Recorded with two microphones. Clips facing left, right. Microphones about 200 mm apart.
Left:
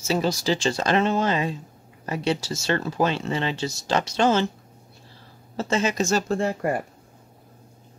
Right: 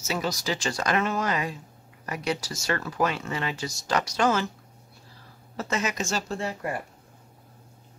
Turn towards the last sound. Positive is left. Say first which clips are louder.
# left 7 dB
turn(degrees=50)  # may be behind; listen again after turning